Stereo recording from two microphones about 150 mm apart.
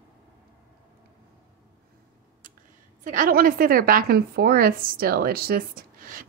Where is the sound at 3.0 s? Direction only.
65° right (ahead or behind).